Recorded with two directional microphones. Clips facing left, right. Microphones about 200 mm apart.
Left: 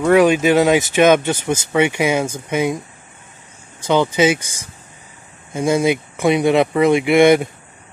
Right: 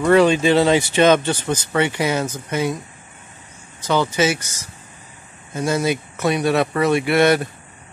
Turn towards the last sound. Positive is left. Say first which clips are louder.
# left 4 dB
turn(degrees=15)  # may be behind; listen again after turning